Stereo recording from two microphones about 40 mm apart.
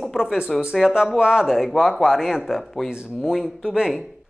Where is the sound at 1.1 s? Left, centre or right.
Right.